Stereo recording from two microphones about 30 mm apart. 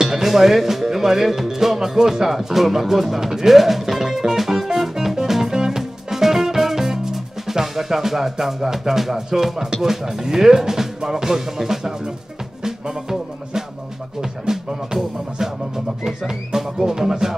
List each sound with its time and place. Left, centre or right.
0.0 s speech: centre
2.2 s speech: centre
4.9 s music: centre
9.8 s speech: centre
14.4 s speech: centre
15.3 s music: centre
16.3 s speech: centre